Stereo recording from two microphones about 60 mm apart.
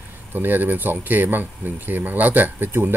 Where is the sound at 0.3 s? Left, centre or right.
Right.